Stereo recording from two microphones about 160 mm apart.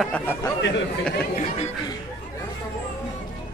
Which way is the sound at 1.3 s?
40° left (ahead or behind).